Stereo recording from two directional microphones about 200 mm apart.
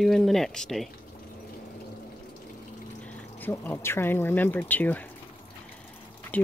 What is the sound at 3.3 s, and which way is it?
Speech, 10° left (ahead or behind).